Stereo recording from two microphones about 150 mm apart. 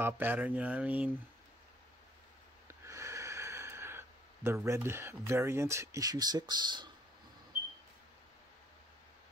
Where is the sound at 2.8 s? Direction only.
20° right (ahead or behind).